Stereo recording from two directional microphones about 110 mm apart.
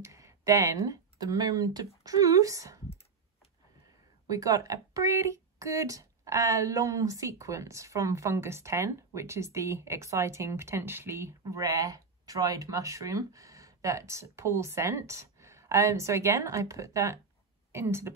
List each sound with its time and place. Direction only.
0.0 s speech: 30° right (ahead or behind)
4.3 s speech: 30° right (ahead or behind)